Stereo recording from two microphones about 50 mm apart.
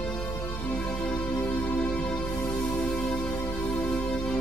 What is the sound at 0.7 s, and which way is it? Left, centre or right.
Music, left.